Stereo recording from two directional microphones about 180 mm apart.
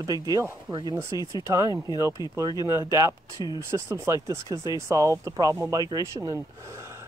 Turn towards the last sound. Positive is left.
turn(degrees=-15)  # may be behind; listen again after turning